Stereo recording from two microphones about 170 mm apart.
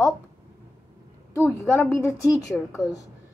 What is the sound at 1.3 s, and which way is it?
A woman's voice, 15° left (ahead or behind).